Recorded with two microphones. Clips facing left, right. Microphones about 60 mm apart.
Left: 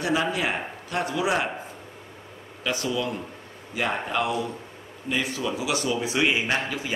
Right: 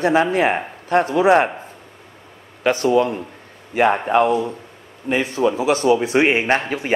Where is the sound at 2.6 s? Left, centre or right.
Right.